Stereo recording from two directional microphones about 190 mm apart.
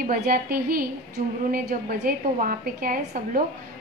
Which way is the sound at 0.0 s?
50° right (ahead or behind).